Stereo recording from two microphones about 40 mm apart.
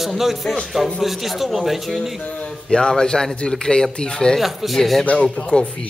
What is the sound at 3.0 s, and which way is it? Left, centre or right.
Speech, centre.